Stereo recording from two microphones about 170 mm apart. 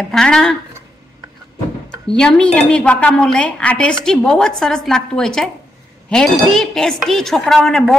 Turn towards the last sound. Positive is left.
turn(degrees=0)  # may be behind; listen again after turning